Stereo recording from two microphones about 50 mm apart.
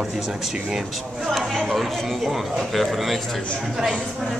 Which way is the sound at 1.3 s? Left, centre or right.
Centre.